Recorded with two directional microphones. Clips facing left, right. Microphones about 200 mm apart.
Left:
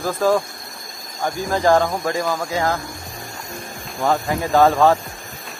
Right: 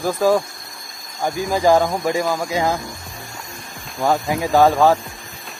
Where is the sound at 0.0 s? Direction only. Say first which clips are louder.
Right 1 dB; 10° right (ahead or behind).